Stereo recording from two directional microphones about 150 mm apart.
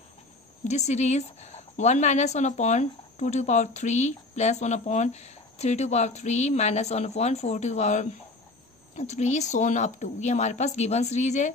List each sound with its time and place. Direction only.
0.7 s speech: 50° left (ahead or behind)